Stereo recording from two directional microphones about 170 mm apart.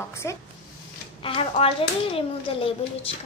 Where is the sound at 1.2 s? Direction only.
35° left (ahead or behind).